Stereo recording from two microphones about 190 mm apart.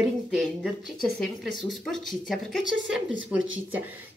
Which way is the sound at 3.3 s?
90° right.